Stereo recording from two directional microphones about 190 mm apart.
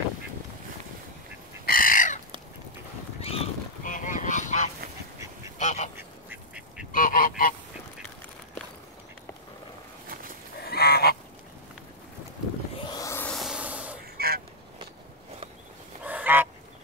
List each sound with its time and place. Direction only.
1.7 s chicken: 45° left (ahead or behind)
3.2 s boat: 30° left (ahead or behind)
3.8 s goose: 45° left (ahead or behind)
5.6 s duck: 40° left (ahead or behind)
5.9 s quack: 10° right (ahead or behind)
6.9 s goose: 45° left (ahead or behind)
10.6 s goose: 55° left (ahead or behind)
12.9 s a sound: 15° left (ahead or behind)
13.3 s vehicle: centre (ahead or behind)
14.1 s quack: 55° right (ahead or behind)
16.0 s goose: 10° right (ahead or behind)